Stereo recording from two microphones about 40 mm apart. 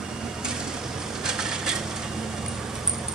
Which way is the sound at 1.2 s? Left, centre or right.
Centre.